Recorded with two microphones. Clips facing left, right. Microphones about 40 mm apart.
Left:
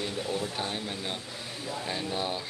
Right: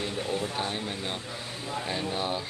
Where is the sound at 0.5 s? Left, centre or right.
Centre.